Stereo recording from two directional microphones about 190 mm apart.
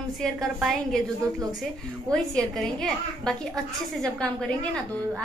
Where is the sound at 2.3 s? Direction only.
Centre (ahead or behind).